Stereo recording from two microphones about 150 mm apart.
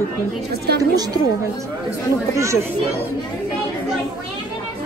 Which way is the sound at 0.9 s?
25° right (ahead or behind).